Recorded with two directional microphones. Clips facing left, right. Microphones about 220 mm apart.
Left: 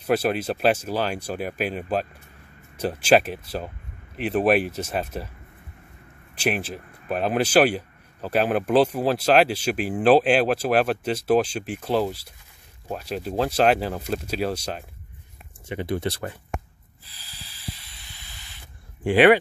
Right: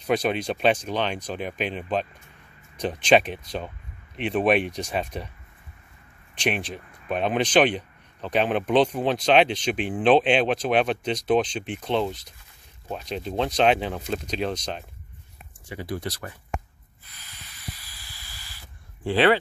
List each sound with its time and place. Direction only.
0.0 s speech: 5° left (ahead or behind)
6.4 s speech: 5° left (ahead or behind)
15.7 s speech: 25° left (ahead or behind)
17.0 s snake: 30° left (ahead or behind)
19.0 s speech: 15° left (ahead or behind)